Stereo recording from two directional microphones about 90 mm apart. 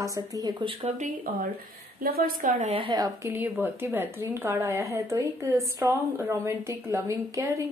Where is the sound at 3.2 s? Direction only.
25° right (ahead or behind).